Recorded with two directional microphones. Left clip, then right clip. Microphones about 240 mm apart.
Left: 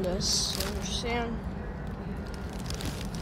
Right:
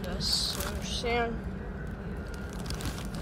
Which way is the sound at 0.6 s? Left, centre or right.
Centre.